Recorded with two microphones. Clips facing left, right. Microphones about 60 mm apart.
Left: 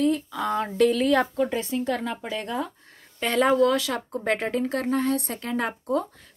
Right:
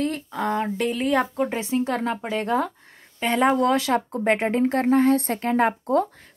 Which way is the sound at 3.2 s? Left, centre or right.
Centre.